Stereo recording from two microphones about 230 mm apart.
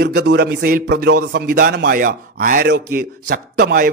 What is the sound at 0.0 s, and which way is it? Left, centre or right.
A man's voice, right.